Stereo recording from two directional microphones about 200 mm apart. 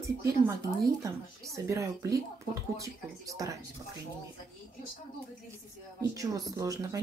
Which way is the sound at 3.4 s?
15° right (ahead or behind).